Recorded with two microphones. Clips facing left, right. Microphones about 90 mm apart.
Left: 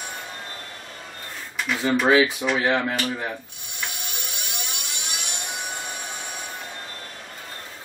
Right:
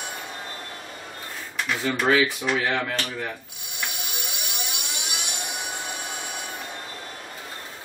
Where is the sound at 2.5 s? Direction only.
15° left (ahead or behind).